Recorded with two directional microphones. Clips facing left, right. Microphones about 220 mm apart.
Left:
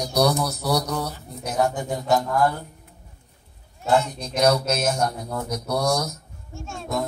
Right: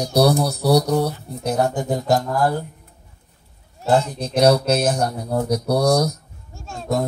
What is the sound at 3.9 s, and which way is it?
Speech, 35° right (ahead or behind).